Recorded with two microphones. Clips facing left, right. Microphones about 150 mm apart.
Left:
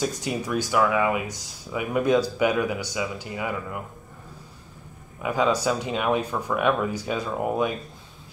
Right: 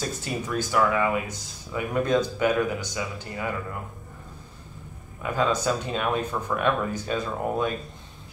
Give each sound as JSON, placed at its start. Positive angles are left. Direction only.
{"t": 0.0, "sound": "speech", "side_deg": 15}
{"t": 5.2, "sound": "speech", "side_deg": 10}